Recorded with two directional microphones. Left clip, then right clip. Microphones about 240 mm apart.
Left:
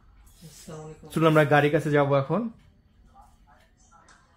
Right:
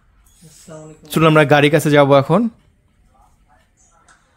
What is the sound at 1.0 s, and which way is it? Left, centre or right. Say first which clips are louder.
Speech: right 8 dB; right.